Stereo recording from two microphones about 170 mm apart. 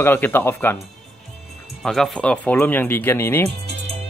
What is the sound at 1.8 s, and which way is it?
Speech, 5° left (ahead or behind).